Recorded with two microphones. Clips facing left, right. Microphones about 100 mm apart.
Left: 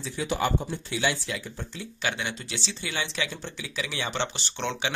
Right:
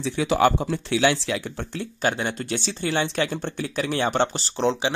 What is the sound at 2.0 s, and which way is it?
Speech, 40° right (ahead or behind).